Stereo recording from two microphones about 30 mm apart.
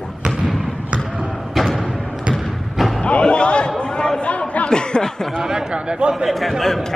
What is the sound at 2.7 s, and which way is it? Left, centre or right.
Music, centre.